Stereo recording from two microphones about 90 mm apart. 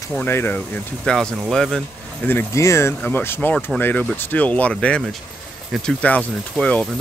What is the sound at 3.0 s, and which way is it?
Speech, 20° left (ahead or behind).